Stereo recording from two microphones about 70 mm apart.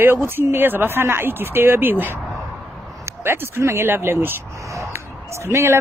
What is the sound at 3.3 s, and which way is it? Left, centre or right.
Speech, right.